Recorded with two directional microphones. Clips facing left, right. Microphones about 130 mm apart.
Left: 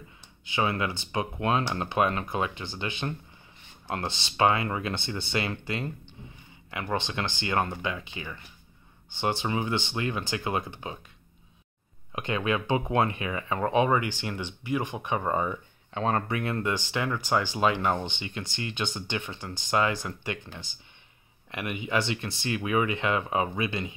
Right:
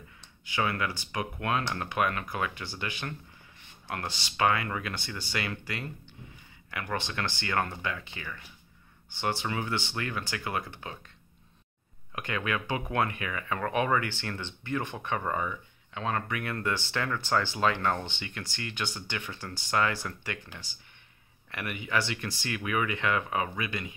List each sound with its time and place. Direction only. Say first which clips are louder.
0.5 s speech: left 2 dB; 25° left (ahead or behind)
12.1 s speech: left 4 dB; 20° left (ahead or behind)
15.3 s speech: left 4 dB; 35° left (ahead or behind)